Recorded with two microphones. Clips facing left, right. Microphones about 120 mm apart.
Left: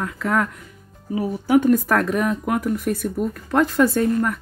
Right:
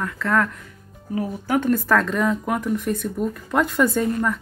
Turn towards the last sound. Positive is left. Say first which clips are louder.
# left 2 dB
turn(degrees=5)  # may be behind; listen again after turning